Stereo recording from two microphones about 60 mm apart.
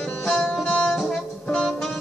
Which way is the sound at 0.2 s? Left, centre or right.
Centre.